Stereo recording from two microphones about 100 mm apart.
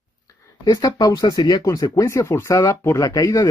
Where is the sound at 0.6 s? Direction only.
45° left (ahead or behind).